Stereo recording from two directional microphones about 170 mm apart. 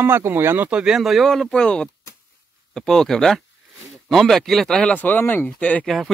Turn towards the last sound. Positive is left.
turn(degrees=0)  # may be behind; listen again after turning